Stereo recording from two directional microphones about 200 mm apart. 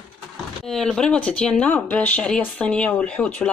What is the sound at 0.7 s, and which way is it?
Speech, centre (ahead or behind).